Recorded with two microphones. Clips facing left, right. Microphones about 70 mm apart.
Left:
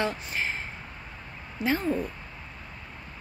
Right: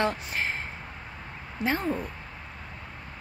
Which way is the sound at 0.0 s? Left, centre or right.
Right.